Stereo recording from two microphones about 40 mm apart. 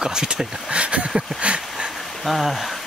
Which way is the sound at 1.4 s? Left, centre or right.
Right.